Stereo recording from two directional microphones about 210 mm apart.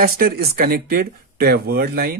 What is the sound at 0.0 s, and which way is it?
Speech, 45° right (ahead or behind).